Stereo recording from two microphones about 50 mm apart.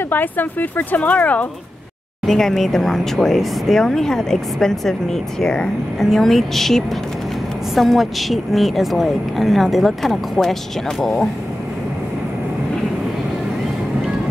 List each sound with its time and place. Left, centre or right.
0.1 s speech: left
2.2 s a woman's voice: centre